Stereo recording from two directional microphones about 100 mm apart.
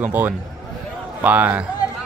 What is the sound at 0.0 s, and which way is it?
A man's voice, 20° right (ahead or behind).